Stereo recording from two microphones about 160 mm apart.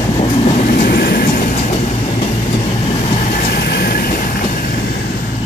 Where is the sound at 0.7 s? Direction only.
70° left (ahead or behind).